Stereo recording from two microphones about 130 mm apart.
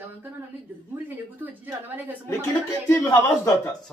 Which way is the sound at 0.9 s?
15° right (ahead or behind).